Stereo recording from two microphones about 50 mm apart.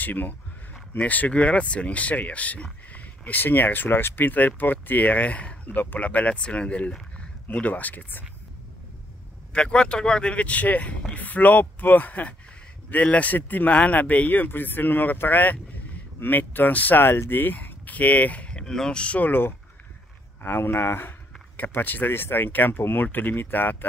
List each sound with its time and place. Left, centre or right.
0.0 s speech: left
7.5 s speech: left
9.5 s speech: centre
20.4 s speech: left
21.5 s speech: left